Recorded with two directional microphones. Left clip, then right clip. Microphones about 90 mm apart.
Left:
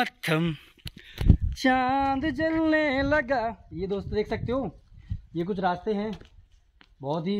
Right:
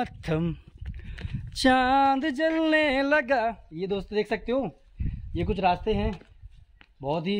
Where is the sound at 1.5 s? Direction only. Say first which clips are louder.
Right 3 dB; 70° right (ahead or behind).